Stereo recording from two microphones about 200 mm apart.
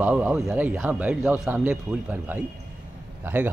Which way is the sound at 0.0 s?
10° right (ahead or behind).